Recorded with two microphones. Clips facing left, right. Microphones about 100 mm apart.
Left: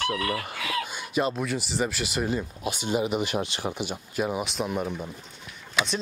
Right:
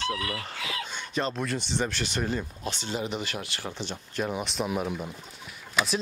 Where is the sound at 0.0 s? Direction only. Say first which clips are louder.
Left 3 dB; 55° left (ahead or behind).